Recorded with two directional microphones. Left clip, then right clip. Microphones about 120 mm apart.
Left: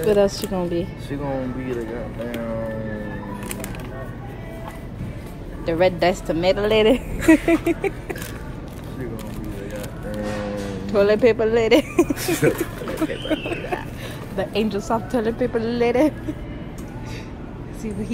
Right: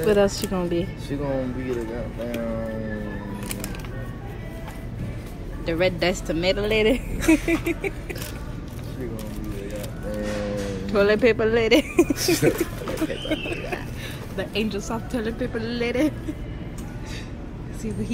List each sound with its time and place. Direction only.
0.0 s a woman's voice: 15° left (ahead or behind)
5.7 s a woman's voice: 20° left (ahead or behind)
10.9 s a woman's voice: 15° left (ahead or behind)
13.3 s a sound: 20° left (ahead or behind)
14.3 s a woman's voice: 20° left (ahead or behind)